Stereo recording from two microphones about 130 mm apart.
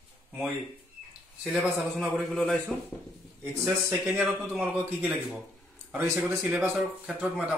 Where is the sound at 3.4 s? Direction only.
20° right (ahead or behind).